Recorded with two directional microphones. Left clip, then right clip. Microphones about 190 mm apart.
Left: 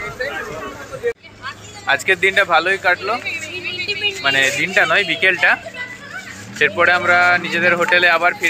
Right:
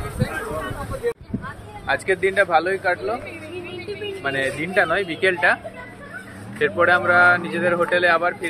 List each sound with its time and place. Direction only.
1.9 s speech: centre (ahead or behind)
3.3 s a sound: 45° right (ahead or behind)
4.2 s speech: 5° left (ahead or behind)
6.6 s speech: 5° left (ahead or behind)